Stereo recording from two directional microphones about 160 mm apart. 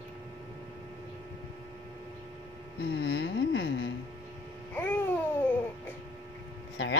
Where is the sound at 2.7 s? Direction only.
80° left.